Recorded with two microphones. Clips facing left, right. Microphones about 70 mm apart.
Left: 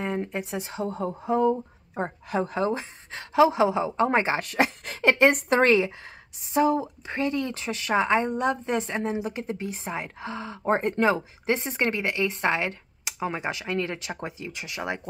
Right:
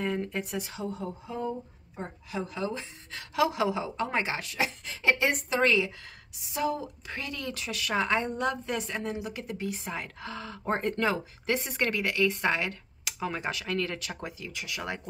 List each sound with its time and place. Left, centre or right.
0.0 s speech: left
0.8 s a sound: left
2.0 s a woman's voice: left
4.5 s speech: left